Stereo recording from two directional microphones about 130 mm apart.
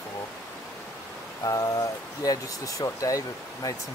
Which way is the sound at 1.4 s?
25° left (ahead or behind).